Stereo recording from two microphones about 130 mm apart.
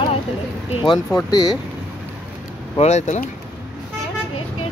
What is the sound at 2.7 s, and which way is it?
Speech, 60° left (ahead or behind).